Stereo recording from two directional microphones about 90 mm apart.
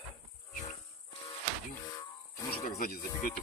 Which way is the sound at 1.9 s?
40° left (ahead or behind).